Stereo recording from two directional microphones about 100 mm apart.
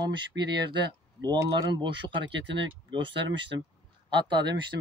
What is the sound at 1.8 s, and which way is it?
Speech, 55° right (ahead or behind).